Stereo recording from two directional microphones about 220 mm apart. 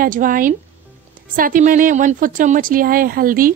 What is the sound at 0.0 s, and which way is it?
A woman's voice, 40° right (ahead or behind).